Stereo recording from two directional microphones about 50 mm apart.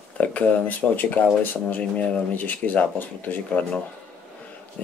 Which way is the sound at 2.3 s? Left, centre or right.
Left.